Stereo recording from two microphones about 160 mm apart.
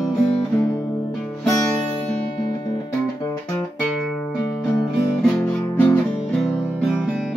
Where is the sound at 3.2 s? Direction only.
20° left (ahead or behind).